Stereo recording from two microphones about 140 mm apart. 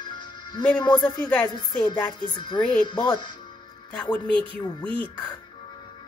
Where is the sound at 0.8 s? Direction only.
30° left (ahead or behind).